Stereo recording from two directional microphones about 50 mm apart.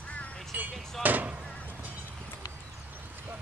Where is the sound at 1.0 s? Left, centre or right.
Right.